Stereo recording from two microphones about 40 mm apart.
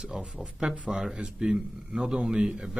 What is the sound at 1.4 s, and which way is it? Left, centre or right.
Speech, centre.